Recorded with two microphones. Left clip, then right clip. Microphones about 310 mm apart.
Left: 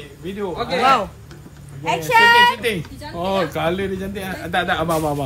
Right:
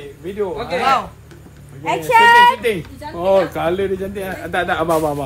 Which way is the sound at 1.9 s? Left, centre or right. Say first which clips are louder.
Right 2 dB; left.